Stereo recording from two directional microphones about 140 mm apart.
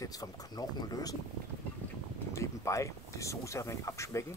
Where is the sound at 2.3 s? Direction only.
20° left (ahead or behind).